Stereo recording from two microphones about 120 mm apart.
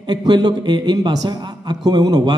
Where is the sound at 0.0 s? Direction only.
35° right (ahead or behind).